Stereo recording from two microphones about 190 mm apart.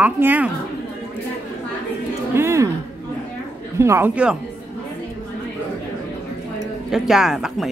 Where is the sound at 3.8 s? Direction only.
10° right (ahead or behind).